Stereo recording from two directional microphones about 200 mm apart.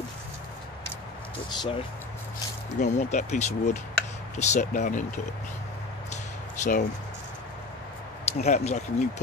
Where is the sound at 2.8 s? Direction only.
35° left (ahead or behind).